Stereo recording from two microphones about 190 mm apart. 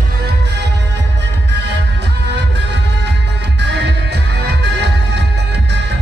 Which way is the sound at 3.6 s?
60° right (ahead or behind).